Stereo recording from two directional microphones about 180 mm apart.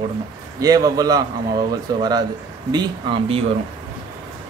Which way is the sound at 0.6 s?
20° right (ahead or behind).